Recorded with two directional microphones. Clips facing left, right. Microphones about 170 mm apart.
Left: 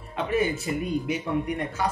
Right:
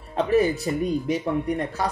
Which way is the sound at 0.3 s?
35° right (ahead or behind).